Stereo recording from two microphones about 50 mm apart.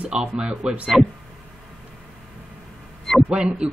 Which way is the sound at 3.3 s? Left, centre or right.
Centre.